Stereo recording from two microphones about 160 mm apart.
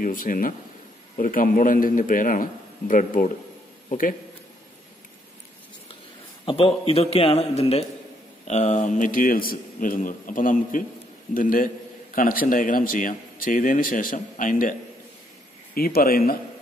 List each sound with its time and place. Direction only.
0.0 s speech: 60° left (ahead or behind)
6.4 s a man's voice: 35° left (ahead or behind); by 14.8 s 55° left (ahead or behind)
15.7 s speech: 70° left (ahead or behind)